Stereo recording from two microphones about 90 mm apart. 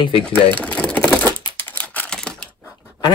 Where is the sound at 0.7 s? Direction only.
15° left (ahead or behind).